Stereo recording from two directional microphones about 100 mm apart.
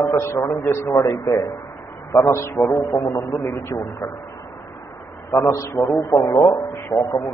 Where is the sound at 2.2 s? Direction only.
25° left (ahead or behind).